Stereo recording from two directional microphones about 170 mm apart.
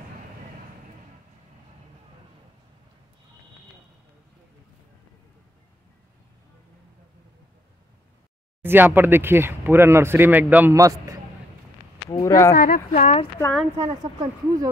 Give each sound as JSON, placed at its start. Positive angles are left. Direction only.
{"t": 8.6, "sound": "speech", "side_deg": -10}
{"t": 12.1, "sound": "speech", "side_deg": 20}
{"t": 12.5, "sound": "speech", "side_deg": 55}
{"t": 13.7, "sound": "speech", "side_deg": -20}